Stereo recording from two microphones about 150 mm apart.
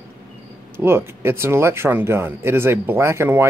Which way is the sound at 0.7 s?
15° right (ahead or behind).